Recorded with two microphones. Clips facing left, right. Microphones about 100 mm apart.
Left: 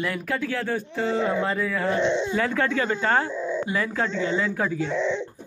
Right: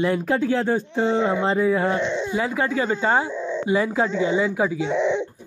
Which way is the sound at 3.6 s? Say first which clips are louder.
Right 5 dB; 20° right (ahead or behind).